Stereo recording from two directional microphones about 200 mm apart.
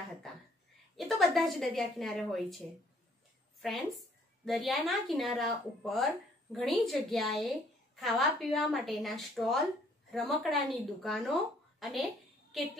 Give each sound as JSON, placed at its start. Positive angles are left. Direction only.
{"t": 0.9, "sound": "a woman's voice", "side_deg": 0}
{"t": 3.6, "sound": "a woman's voice", "side_deg": 0}